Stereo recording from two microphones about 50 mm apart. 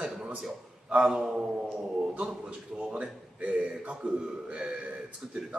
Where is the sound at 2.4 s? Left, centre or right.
Right.